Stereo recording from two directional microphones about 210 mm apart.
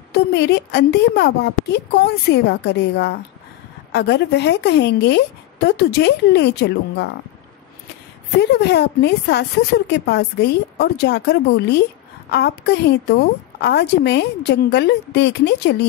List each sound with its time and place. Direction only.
0.1 s a woman's voice: 50° left (ahead or behind)
8.4 s a woman's voice: 55° left (ahead or behind)